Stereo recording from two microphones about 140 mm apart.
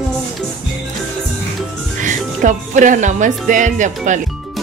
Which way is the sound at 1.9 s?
65° right (ahead or behind).